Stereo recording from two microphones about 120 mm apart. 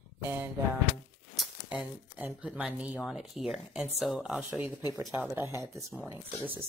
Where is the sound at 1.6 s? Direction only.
10° right (ahead or behind).